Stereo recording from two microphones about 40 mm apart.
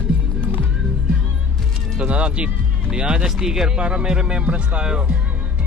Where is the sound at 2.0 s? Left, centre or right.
Right.